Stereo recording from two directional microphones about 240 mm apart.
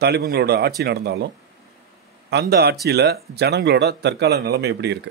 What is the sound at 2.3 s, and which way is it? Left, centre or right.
A man's voice, right.